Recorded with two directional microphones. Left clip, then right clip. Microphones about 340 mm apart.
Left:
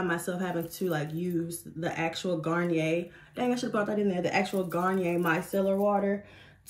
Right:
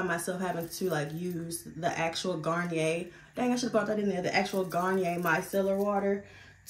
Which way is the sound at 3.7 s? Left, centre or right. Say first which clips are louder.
Even; centre.